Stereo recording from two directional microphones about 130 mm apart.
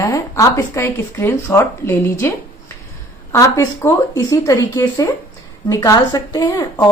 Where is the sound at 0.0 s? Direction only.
25° left (ahead or behind).